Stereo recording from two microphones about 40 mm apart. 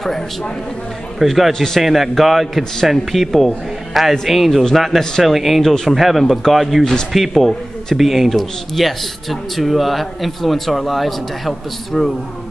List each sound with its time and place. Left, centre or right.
1.2 s speech: centre
1.5 s a man's voice: centre
1.8 s speech: centre
6.8 s a man's voice: centre
7.1 s speech: centre